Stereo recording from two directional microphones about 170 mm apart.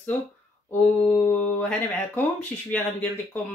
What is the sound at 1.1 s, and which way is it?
Speech, 10° left (ahead or behind).